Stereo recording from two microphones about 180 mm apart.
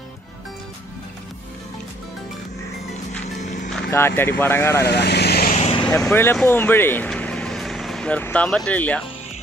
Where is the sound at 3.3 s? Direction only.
40° left (ahead or behind).